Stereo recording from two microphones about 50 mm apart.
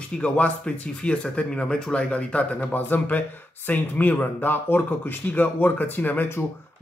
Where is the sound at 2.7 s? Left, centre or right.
Left.